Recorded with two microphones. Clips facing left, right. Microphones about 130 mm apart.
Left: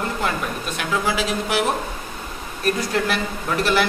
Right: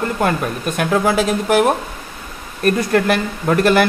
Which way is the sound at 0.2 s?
50° right (ahead or behind).